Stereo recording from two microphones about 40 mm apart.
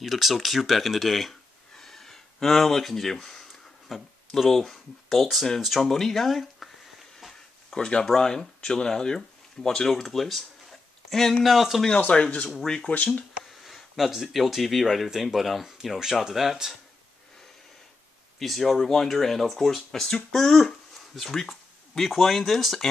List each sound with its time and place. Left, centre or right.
0.0 s speech: centre
1.8 s a sound: centre
3.9 s speech: centre
7.7 s speech: centre
11.4 s speech: centre
12.1 s speech: left
12.9 s speech: left
13.5 s a sound: centre
14.1 s speech: centre
18.4 s speech: centre